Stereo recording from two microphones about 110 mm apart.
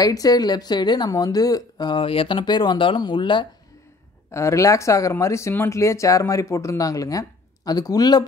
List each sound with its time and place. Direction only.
0.0 s speech: 35° left (ahead or behind)
2.0 s speech: 55° left (ahead or behind)
4.3 s speech: 25° left (ahead or behind)